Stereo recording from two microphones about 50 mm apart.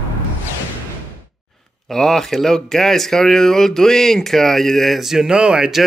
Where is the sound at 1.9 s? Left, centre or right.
Centre.